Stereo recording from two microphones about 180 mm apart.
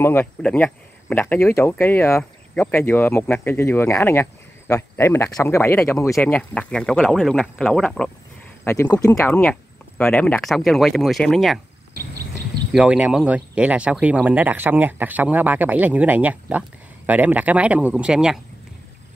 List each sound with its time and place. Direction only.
0.0 s speech: 10° left (ahead or behind)
8.6 s speech: 15° left (ahead or behind); by 11.6 s centre (ahead or behind)
12.7 s speech: 5° right (ahead or behind)